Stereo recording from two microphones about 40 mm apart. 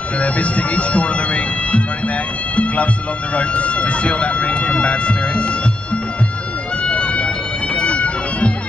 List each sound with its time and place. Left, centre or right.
0.2 s speech: left
6.8 s vehicle: left
7.7 s a sound: left